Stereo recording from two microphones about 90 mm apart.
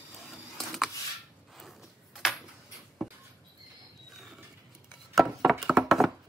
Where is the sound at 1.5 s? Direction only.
Centre (ahead or behind).